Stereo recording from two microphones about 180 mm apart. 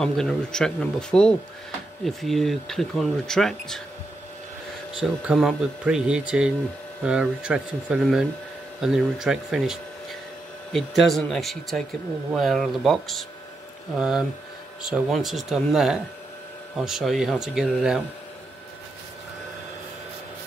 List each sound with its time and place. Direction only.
0.0 s speech: 5° left (ahead or behind)
4.9 s speech: 5° right (ahead or behind)
14.8 s speech: centre (ahead or behind)